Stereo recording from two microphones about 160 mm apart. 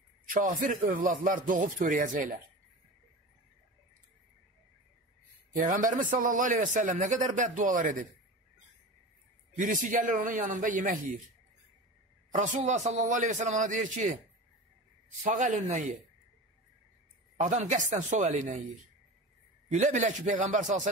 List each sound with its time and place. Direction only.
0.3 s a man's voice: 60° right (ahead or behind)
5.5 s a man's voice: 55° right (ahead or behind)
9.6 s a man's voice: 55° right (ahead or behind)
12.3 s a man's voice: 50° right (ahead or behind)
15.2 s a man's voice: 50° right (ahead or behind)
17.4 s a man's voice: 50° right (ahead or behind)
19.7 s a man's voice: 50° right (ahead or behind)